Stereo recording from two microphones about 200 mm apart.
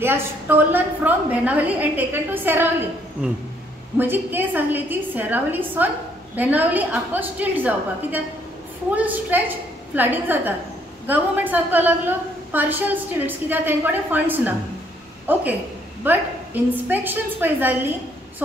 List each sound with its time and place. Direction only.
0.0 s a woman's voice: 10° right (ahead or behind)
4.0 s a woman's voice: 10° right (ahead or behind)